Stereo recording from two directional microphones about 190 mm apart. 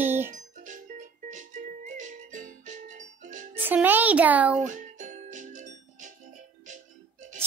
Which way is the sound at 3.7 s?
10° right (ahead or behind).